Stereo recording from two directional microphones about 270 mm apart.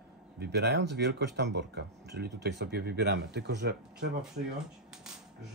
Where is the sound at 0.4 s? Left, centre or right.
Right.